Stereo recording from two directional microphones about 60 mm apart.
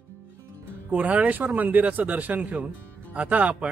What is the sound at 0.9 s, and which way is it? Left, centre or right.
Speech, right.